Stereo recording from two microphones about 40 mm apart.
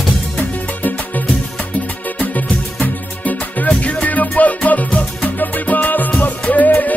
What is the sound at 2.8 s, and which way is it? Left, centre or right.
Music, left.